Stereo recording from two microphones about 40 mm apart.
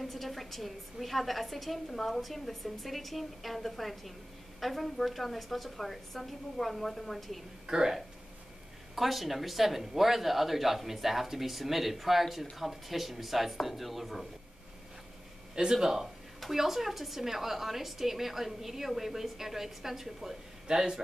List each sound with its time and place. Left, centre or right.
0.0 s a woman's voice: centre
7.6 s speech: centre
8.9 s a woman's voice: centre
15.5 s a woman's voice: centre
20.6 s speech: centre